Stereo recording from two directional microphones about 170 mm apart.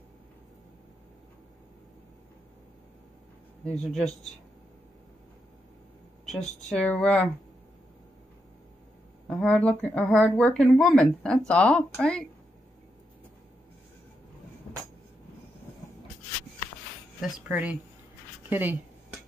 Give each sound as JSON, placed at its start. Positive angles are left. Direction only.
{"t": 3.6, "sound": "speech", "side_deg": 0}
{"t": 6.2, "sound": "speech", "side_deg": 5}
{"t": 9.3, "sound": "speech", "side_deg": 5}
{"t": 17.2, "sound": "speech", "side_deg": -10}